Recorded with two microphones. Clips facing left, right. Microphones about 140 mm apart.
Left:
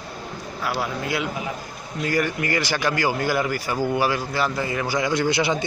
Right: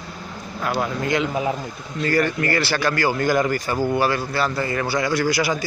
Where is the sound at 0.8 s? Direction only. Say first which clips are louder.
Right 5 dB; 5° left (ahead or behind).